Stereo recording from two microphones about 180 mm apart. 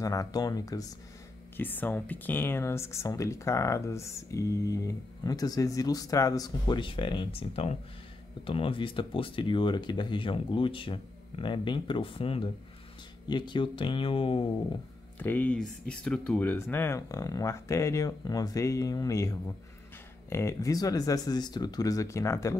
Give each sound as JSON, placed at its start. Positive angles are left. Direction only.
{"t": 0.0, "sound": "speech", "side_deg": 20}
{"t": 15.1, "sound": "speech", "side_deg": 10}